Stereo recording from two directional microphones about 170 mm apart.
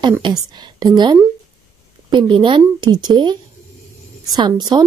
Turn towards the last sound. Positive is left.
turn(degrees=-25)  # may be behind; listen again after turning